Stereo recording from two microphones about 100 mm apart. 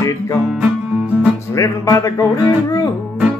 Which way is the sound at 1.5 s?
35° left (ahead or behind).